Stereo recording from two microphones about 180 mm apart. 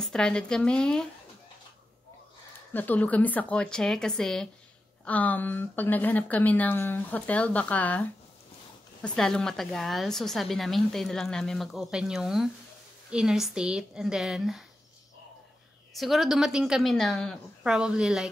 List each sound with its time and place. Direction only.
0.0 s a woman's voice: 5° left (ahead or behind)
2.7 s a woman's voice: 10° left (ahead or behind)
9.0 s a woman's voice: 5° left (ahead or behind)
15.9 s a woman's voice: centre (ahead or behind)